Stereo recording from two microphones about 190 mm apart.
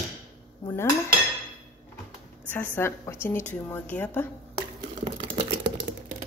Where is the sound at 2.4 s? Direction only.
10° left (ahead or behind).